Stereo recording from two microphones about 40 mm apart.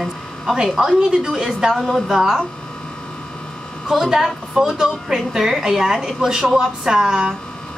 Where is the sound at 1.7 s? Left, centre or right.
Centre.